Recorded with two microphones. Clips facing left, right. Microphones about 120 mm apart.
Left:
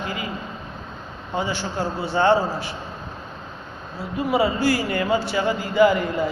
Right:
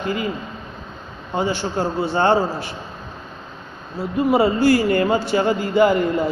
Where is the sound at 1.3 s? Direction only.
40° right (ahead or behind).